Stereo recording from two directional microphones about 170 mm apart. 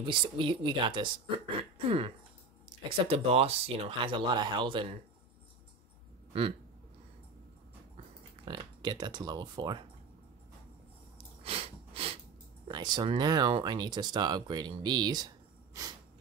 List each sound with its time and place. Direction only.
0.0 s speech: 30° right (ahead or behind)
1.6 s throat clearing: 30° right (ahead or behind)
3.1 s speech: 35° right (ahead or behind)
8.5 s speech: 25° right (ahead or behind)
11.1 s sneeze: 35° right (ahead or behind)
12.6 s speech: 25° right (ahead or behind)